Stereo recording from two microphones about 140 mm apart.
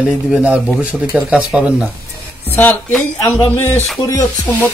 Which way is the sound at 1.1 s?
10° right (ahead or behind).